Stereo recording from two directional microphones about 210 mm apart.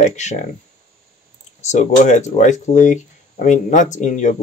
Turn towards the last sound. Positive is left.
turn(degrees=35)  # may be behind; listen again after turning